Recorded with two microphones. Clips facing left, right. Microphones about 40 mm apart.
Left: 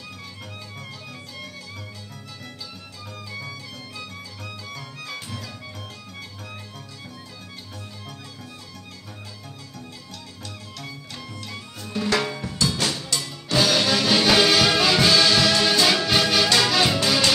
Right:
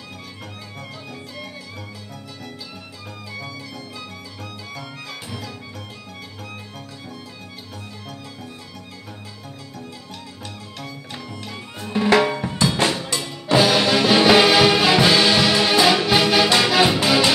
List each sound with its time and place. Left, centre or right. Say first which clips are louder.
4.7 s music: right 1 dB; centre
11.8 s music: right 7 dB; right